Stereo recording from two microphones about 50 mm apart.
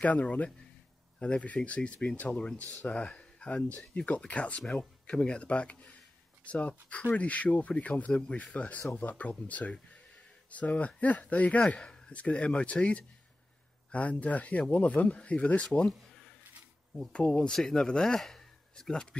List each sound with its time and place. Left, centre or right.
0.0 s speech: left
16.9 s speech: centre
17.5 s speech: centre